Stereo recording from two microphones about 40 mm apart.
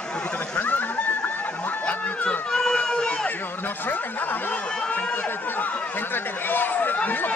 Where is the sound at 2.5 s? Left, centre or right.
Left.